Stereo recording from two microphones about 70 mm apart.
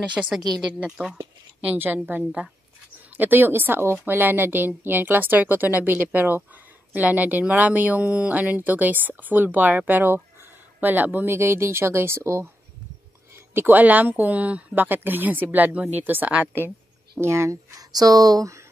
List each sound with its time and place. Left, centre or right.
0.0 s speech: centre
1.6 s speech: right
3.2 s speech: right
13.6 s speech: right
17.2 s speech: right